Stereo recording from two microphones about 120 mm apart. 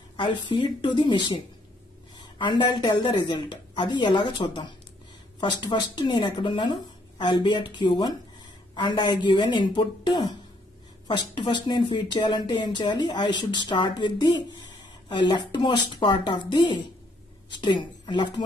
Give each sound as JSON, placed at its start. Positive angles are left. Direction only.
{"t": 0.2, "sound": "a woman's voice", "side_deg": 40}